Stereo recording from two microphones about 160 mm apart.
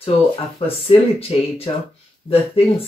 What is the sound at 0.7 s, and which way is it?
Speech, 35° left (ahead or behind).